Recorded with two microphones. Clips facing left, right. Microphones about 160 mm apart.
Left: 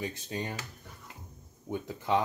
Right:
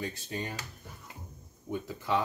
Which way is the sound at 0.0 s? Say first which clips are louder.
Left 1 dB; 20° left (ahead or behind).